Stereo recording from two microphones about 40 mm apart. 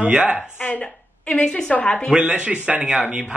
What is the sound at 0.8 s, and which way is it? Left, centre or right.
Speech, left.